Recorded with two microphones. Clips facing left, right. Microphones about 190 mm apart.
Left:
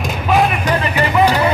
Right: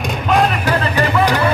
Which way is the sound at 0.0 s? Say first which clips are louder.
Even; centre (ahead or behind).